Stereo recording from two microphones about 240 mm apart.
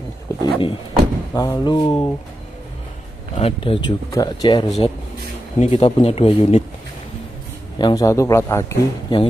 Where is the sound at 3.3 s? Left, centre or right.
Left.